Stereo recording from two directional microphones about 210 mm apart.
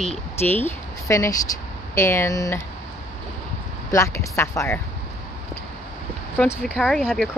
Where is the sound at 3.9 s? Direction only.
15° left (ahead or behind).